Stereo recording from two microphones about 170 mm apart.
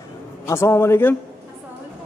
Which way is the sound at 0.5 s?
15° left (ahead or behind).